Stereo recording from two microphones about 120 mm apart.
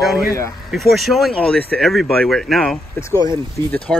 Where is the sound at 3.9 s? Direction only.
5° left (ahead or behind).